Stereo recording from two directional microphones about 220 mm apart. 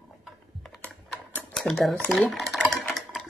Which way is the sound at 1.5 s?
Centre (ahead or behind).